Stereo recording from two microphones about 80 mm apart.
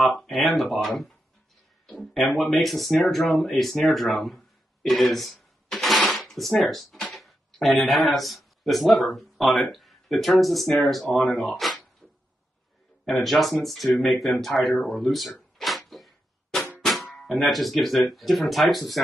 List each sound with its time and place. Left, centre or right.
0.0 s speech: centre
4.8 s a sound: centre
7.1 s speech: centre
13.0 s speech: centre
15.5 s a sound: centre
16.8 s speech: centre